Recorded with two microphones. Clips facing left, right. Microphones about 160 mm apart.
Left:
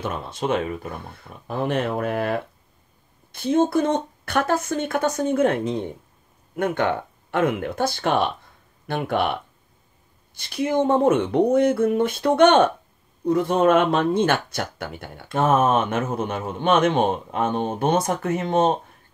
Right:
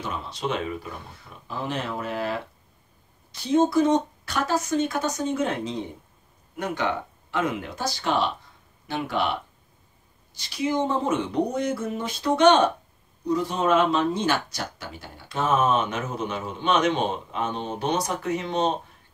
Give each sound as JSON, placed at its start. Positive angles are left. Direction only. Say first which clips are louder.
{"t": 0.0, "sound": "a woman's voice", "louder": "left 4 dB", "side_deg": 55}